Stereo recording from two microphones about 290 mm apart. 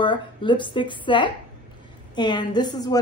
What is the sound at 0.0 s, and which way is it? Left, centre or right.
Speech, centre.